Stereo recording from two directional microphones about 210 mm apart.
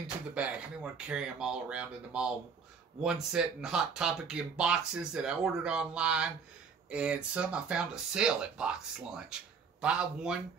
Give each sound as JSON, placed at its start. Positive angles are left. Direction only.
{"t": 0.0, "sound": "speech", "side_deg": -5}